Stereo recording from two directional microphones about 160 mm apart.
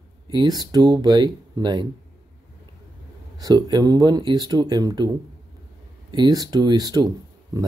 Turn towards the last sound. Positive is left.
turn(degrees=-25)  # may be behind; listen again after turning